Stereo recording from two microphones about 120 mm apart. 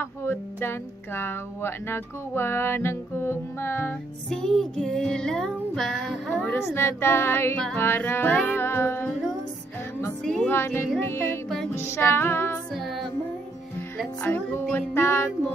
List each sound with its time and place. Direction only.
0.0 s speech: 20° left (ahead or behind)
4.3 s child singing: 5° left (ahead or behind)
6.6 s speech: 20° left (ahead or behind)
10.2 s child singing: 5° left (ahead or behind)
10.5 s speech: 20° left (ahead or behind)
11.4 s music: 5° left (ahead or behind)
11.7 s speech: 20° left (ahead or behind)
12.7 s child singing: centre (ahead or behind)
14.2 s music: 15° left (ahead or behind)